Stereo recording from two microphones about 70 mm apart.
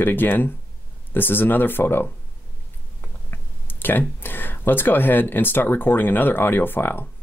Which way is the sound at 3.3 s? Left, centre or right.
Left.